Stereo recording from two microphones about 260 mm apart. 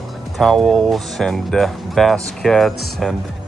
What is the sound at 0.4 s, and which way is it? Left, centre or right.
Speech, centre.